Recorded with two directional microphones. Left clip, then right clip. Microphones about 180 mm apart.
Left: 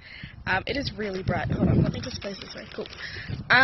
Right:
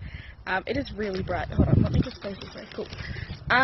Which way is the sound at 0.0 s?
5° right (ahead or behind).